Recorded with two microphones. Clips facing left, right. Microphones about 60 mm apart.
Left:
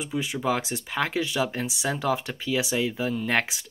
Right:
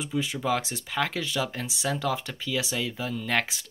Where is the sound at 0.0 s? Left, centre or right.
Centre.